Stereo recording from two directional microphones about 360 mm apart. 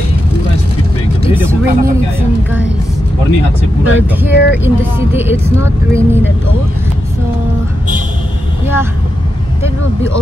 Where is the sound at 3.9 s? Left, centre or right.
Left.